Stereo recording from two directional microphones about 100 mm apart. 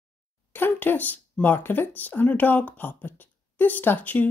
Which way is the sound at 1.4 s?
20° left (ahead or behind).